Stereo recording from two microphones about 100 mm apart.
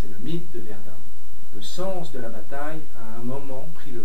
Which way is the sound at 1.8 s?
10° left (ahead or behind).